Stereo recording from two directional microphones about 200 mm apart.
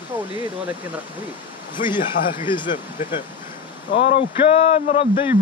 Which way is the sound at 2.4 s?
25° left (ahead or behind).